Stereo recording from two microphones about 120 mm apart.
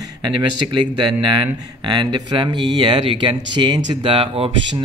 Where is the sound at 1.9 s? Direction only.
40° right (ahead or behind).